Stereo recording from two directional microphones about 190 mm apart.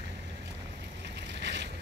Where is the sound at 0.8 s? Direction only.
65° right (ahead or behind).